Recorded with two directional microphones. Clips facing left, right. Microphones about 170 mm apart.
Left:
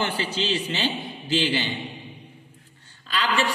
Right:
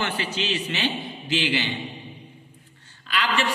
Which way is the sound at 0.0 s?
35° left (ahead or behind).